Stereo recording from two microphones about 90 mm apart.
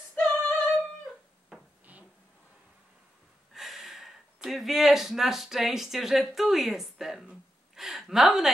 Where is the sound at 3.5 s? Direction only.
5° right (ahead or behind).